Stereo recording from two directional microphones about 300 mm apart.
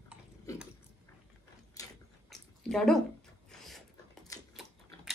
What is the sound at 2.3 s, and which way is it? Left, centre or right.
Chewing, centre.